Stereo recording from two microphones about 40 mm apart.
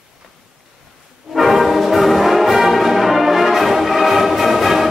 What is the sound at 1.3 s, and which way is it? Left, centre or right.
Brass instrument, centre.